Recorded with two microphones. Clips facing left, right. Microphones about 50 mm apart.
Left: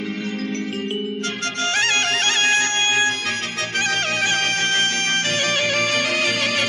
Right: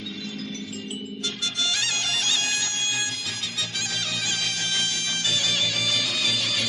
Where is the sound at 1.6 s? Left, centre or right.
Left.